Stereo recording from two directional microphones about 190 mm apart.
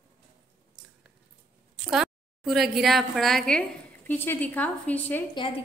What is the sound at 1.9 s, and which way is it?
A woman's voice, centre (ahead or behind).